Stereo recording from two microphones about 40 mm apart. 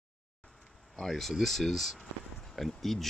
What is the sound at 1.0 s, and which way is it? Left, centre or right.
Speech, centre.